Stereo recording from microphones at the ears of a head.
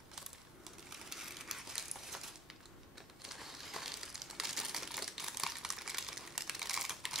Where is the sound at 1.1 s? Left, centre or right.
Centre.